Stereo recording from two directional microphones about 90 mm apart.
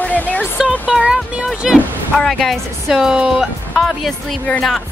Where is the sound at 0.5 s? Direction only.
5° right (ahead or behind).